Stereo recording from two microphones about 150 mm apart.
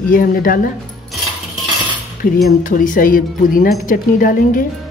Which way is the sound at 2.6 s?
65° left (ahead or behind).